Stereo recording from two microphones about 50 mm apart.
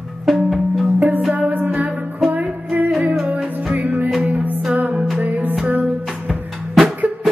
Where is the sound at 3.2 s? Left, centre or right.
Right.